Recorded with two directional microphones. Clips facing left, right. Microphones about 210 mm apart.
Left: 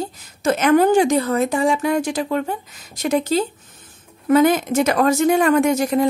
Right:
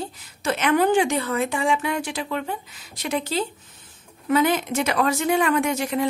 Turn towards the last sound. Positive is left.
turn(degrees=40)  # may be behind; listen again after turning